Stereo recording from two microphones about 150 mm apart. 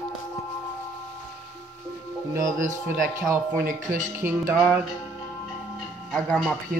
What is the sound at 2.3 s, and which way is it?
Speech, 60° right (ahead or behind).